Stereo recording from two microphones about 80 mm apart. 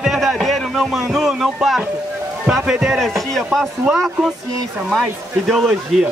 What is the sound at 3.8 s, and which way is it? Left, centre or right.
Speech, centre.